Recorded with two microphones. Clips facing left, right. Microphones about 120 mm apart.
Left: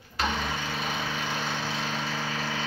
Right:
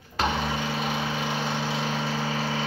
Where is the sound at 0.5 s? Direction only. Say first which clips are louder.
Right 4 dB; 20° right (ahead or behind).